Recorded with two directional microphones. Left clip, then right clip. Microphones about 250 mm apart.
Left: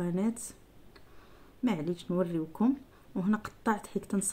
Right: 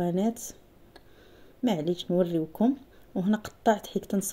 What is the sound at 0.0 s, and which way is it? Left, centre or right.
Speech, centre.